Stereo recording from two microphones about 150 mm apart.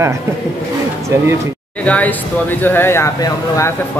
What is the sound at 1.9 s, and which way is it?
Speech, 10° left (ahead or behind).